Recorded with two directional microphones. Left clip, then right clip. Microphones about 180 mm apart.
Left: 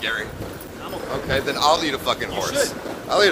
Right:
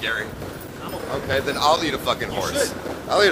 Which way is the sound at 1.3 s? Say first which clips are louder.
Left 1 dB; 5° right (ahead or behind).